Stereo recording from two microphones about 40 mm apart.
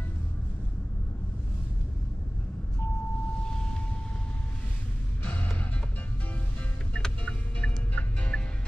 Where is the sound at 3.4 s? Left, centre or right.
Centre.